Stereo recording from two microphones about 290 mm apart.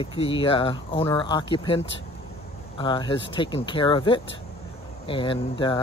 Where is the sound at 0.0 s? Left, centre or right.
Centre.